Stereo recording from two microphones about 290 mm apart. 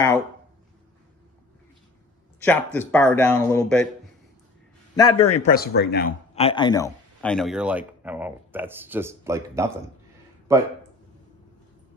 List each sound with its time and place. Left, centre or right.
2.4 s speech: centre
4.9 s speech: centre; by 6.1 s left
6.3 s speech: centre